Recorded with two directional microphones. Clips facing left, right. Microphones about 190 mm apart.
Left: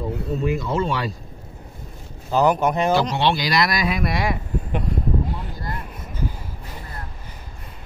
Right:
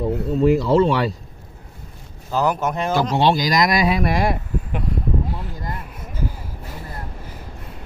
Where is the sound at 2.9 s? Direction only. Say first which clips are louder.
Right 2 dB; 50° right (ahead or behind).